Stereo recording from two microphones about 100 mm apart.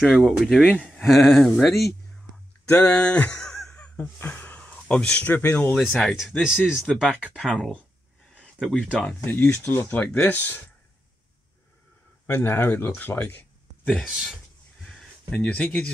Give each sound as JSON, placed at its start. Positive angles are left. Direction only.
{"t": 0.2, "sound": "speech", "side_deg": -10}
{"t": 0.6, "sound": "speech", "side_deg": 10}
{"t": 0.8, "sound": "speech", "side_deg": 0}
{"t": 5.8, "sound": "speech", "side_deg": 0}
{"t": 7.3, "sound": "speech", "side_deg": 5}
{"t": 8.4, "sound": "a sound", "side_deg": 10}
{"t": 8.7, "sound": "speech", "side_deg": -10}
{"t": 9.0, "sound": "speech", "side_deg": 15}
{"t": 12.3, "sound": "speech", "side_deg": 20}
{"t": 14.0, "sound": "speech", "side_deg": -5}
{"t": 14.9, "sound": "a sound", "side_deg": 0}
{"t": 15.3, "sound": "speech", "side_deg": 15}